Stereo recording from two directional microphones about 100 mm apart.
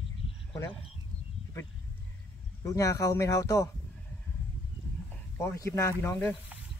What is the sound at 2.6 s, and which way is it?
Speech, 35° left (ahead or behind).